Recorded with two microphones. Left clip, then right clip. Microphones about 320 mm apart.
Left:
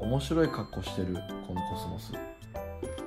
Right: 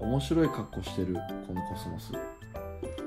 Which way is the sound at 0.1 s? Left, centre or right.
Left.